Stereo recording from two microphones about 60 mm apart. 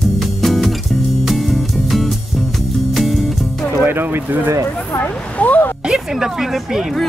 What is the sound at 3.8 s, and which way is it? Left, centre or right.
Music, right.